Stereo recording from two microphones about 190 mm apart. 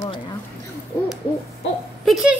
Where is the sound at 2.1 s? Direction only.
Centre (ahead or behind).